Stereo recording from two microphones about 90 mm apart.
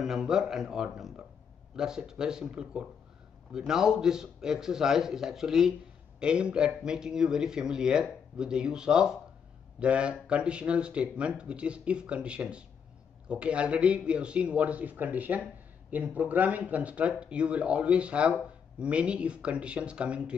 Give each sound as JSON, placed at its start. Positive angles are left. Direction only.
{"t": 0.0, "sound": "a man's voice", "side_deg": -5}